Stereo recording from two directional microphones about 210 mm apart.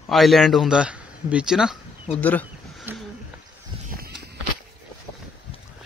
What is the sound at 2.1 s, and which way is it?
Speech, 10° left (ahead or behind).